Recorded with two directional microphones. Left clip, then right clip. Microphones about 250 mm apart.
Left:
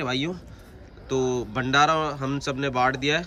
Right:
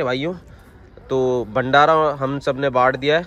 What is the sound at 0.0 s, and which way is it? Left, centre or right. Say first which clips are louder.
Speech: right 6 dB; centre.